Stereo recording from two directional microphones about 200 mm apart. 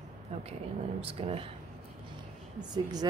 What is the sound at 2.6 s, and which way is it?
Speech, 20° right (ahead or behind).